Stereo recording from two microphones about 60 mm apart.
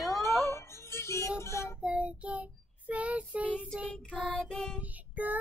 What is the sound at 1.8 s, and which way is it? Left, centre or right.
Child singing, centre.